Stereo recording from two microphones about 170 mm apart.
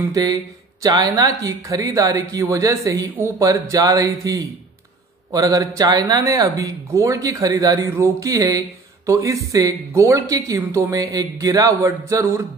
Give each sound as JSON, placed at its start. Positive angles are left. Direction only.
{"t": 0.1, "sound": "speech", "side_deg": -20}